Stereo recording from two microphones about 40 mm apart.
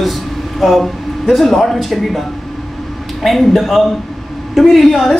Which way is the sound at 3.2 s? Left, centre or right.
Centre.